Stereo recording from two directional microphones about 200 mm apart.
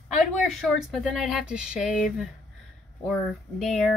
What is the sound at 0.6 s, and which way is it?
Speech, centre (ahead or behind).